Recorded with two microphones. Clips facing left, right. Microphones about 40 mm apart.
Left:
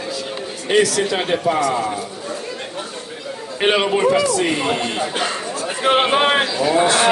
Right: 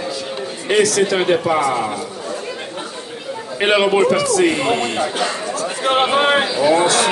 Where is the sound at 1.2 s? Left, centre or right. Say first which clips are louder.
Right 3 dB; centre.